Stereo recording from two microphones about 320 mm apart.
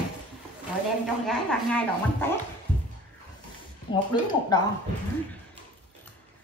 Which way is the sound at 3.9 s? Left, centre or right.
Centre.